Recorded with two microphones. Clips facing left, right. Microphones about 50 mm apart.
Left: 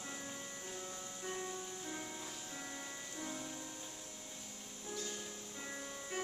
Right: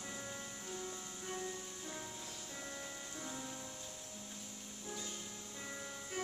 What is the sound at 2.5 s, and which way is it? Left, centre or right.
Music, centre.